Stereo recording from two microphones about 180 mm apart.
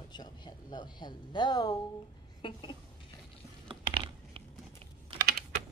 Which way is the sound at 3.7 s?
30° right (ahead or behind).